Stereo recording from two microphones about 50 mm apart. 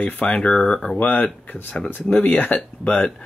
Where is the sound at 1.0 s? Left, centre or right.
Left.